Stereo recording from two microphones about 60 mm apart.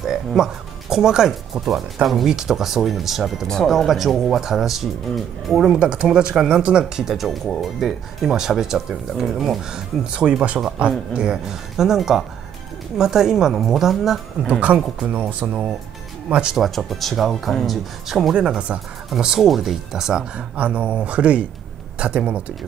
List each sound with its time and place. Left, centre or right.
0.0 s speech: centre
5.8 s speech: centre
9.7 s speech: centre
14.5 s speech: right
16.5 s speech: centre
18.3 s speech: centre
20.5 s speech: right